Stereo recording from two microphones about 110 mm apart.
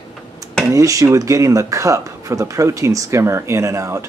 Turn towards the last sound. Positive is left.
turn(degrees=-25)  # may be behind; listen again after turning